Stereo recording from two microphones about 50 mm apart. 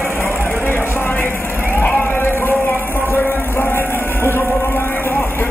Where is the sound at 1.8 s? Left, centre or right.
Left.